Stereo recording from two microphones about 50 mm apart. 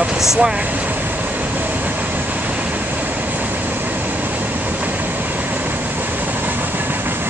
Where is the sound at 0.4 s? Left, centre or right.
Right.